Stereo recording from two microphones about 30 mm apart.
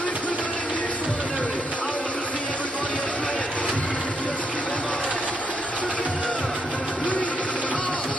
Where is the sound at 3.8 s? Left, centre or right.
Left.